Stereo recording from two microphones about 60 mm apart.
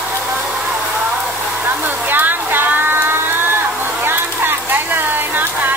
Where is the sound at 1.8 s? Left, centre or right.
Right.